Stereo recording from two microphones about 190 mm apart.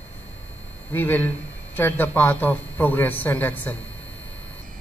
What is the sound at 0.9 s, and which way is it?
A man's voice, 10° left (ahead or behind).